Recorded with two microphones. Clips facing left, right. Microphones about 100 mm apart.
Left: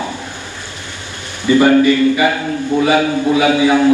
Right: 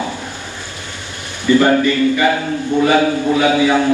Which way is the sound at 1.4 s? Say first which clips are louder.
Left 2 dB; 15° left (ahead or behind).